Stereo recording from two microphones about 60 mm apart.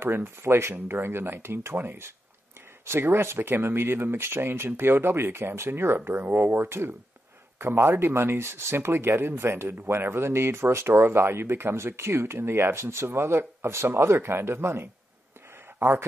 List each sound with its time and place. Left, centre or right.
0.0 s speech: right